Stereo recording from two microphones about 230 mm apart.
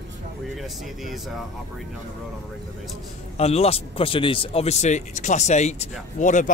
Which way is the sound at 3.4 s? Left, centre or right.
Left.